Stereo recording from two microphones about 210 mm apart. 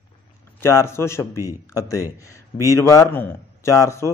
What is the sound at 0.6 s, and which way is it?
A man's voice, 10° left (ahead or behind).